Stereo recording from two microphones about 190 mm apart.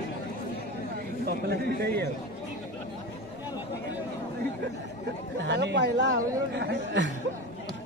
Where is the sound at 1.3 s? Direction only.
55° right (ahead or behind).